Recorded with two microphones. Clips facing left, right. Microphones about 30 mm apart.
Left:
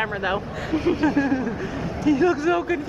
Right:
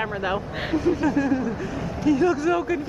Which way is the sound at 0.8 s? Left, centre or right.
Left.